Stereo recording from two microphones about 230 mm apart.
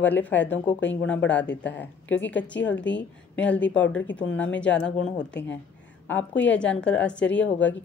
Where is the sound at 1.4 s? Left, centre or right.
Left.